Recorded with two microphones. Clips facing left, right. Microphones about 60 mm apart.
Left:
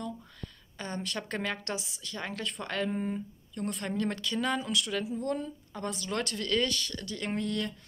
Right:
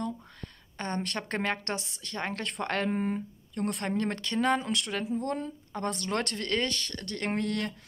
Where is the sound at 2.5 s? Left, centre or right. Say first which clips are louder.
Right 3 dB; right.